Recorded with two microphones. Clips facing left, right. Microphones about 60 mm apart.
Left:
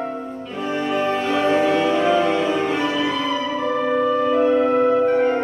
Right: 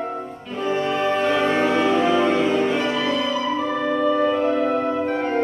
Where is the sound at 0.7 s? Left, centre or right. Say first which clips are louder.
Even; centre.